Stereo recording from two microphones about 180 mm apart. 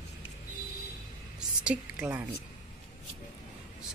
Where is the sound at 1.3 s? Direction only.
5° right (ahead or behind).